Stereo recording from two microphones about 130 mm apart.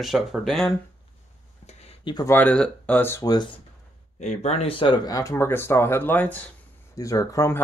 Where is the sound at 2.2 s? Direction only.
15° left (ahead or behind).